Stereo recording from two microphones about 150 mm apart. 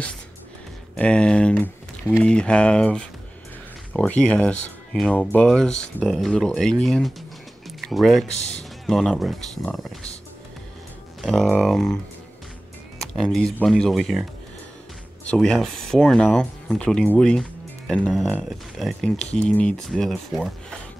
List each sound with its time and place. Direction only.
0.9 s speech: 5° left (ahead or behind)
8.4 s speech: 45° left (ahead or behind)
8.8 s speech: centre (ahead or behind)
11.1 s speech: centre (ahead or behind)
13.0 s speech: centre (ahead or behind)
15.2 s speech: 5° left (ahead or behind)